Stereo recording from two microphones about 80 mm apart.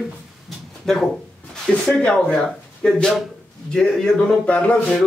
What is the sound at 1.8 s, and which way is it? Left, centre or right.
Speech, centre.